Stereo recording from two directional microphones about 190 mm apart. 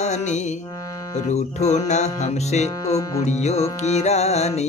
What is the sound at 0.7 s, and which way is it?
Music, 15° left (ahead or behind).